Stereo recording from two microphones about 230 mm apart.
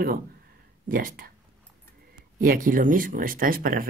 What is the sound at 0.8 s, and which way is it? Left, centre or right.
Speech, right.